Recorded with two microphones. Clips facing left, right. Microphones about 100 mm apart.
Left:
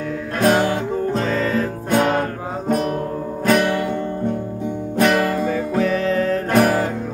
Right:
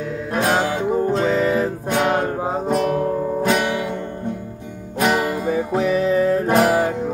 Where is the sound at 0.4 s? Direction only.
15° right (ahead or behind).